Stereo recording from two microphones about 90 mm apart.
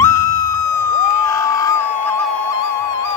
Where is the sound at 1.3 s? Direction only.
35° left (ahead or behind).